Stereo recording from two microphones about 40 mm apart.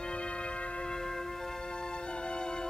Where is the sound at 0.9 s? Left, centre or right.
Centre.